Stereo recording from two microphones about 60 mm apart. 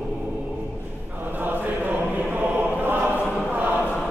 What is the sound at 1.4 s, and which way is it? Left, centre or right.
Chant, right.